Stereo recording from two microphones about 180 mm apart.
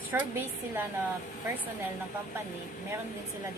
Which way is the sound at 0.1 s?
10° right (ahead or behind).